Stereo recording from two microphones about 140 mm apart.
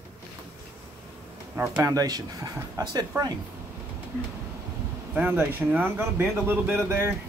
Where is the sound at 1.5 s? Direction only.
20° right (ahead or behind).